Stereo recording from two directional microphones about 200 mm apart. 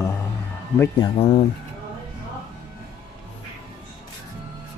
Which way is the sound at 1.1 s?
30° left (ahead or behind).